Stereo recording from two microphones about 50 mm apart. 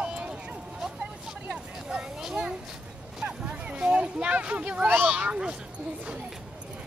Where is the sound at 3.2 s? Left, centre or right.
Centre.